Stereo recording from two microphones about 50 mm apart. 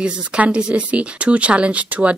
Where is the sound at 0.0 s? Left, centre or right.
Right.